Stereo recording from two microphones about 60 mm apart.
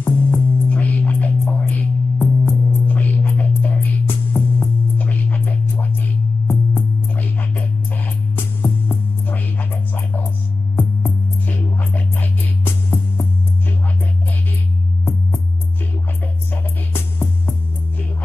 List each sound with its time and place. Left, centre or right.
0.0 s music: left